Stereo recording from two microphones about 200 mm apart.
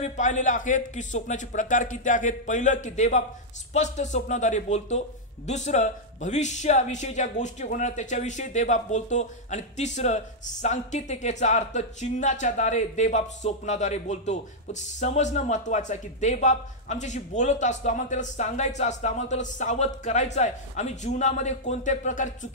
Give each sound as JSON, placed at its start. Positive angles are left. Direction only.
{"t": 0.0, "sound": "speech", "side_deg": 40}